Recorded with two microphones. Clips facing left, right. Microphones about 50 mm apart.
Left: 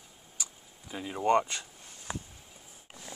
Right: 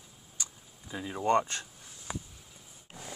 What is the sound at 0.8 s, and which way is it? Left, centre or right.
Speech, left.